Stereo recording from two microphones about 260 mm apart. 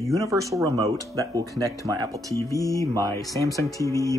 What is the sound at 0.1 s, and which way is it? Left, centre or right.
Speech, centre.